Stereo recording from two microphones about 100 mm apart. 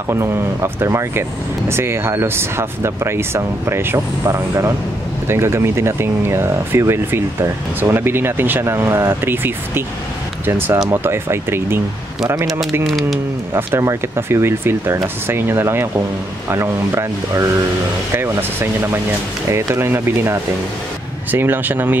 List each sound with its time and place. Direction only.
0.1 s speech: 25° right (ahead or behind)
10.9 s speech: 25° right (ahead or behind)
12.8 s speech: centre (ahead or behind)
13.5 s speech: 25° right (ahead or behind)